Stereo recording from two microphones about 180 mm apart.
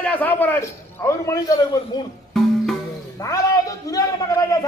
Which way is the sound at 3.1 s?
15° left (ahead or behind).